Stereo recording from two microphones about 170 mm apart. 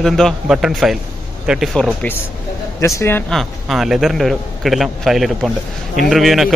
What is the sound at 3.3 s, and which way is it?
Speech, centre (ahead or behind).